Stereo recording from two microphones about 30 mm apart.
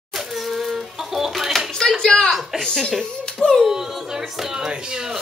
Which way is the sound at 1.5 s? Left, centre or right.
Centre.